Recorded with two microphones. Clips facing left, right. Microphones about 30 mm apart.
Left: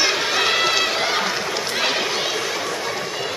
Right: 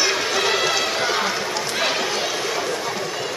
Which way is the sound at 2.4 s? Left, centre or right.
Centre.